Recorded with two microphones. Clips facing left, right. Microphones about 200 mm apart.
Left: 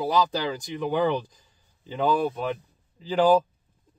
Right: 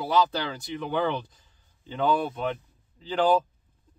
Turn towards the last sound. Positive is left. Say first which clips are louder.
# left 3 dB
turn(degrees=10)  # may be behind; listen again after turning